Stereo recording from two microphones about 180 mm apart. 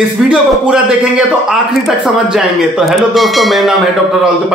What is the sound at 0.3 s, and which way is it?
Speech, 5° right (ahead or behind).